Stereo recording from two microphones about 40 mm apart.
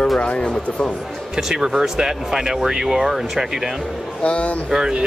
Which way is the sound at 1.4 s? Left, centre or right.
Centre.